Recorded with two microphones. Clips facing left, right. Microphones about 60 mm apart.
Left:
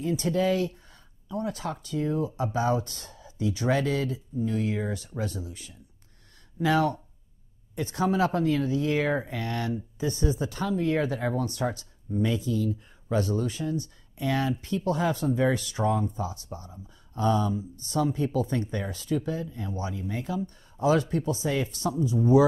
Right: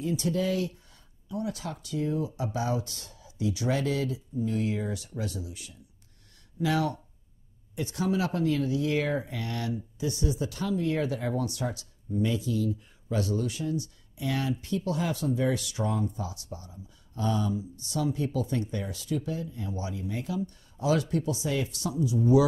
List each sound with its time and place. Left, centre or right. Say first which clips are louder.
0.0 s speech: left 3 dB; left